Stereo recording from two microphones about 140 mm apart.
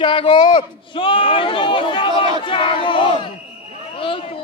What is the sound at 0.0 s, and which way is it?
A man's voice, 40° left (ahead or behind).